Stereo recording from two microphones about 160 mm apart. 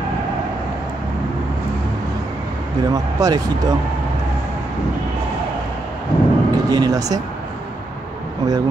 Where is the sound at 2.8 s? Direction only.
25° right (ahead or behind).